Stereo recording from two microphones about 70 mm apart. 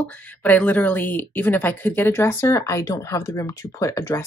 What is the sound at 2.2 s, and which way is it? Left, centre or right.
Speech, left.